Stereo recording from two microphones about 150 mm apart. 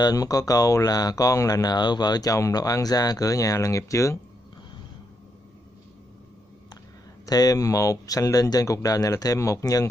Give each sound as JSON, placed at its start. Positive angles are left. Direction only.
{"t": 0.0, "sound": "speech", "side_deg": 25}
{"t": 7.2, "sound": "speech", "side_deg": 25}